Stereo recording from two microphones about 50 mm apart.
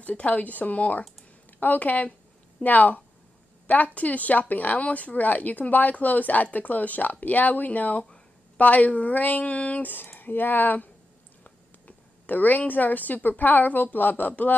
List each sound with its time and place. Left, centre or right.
0.0 s speech: left
12.3 s speech: left